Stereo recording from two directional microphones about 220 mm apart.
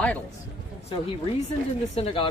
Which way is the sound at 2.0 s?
25° left (ahead or behind).